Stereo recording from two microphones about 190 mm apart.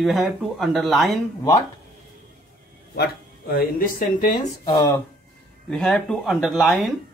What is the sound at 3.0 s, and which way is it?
Speech, 50° left (ahead or behind).